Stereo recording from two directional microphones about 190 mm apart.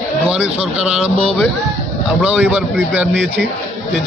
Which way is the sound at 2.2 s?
5° right (ahead or behind).